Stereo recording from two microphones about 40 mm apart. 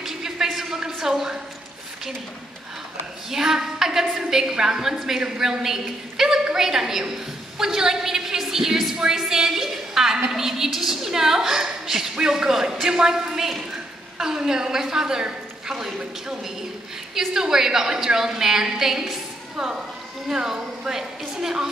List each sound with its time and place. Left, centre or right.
0.0 s a sound: centre
3.3 s a woman's voice: centre
17.1 s a woman's voice: centre
20.2 s a woman's voice: centre